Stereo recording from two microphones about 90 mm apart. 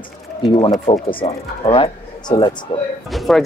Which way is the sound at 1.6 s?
80° left.